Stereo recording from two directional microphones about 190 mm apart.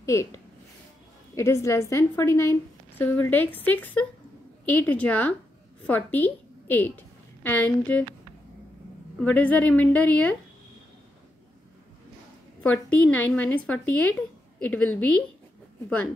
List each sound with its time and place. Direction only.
0.0 s speech: 15° left (ahead or behind)
1.3 s a woman's voice: 15° left (ahead or behind)
9.2 s a woman's voice: 5° left (ahead or behind)
12.9 s a woman's voice: 10° left (ahead or behind)